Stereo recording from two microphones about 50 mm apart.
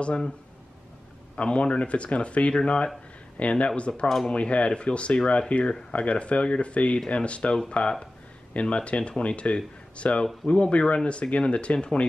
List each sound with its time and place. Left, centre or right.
0.0 s speech: centre
1.3 s speech: centre